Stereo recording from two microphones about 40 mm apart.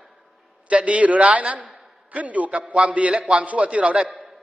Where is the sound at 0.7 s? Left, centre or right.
Right.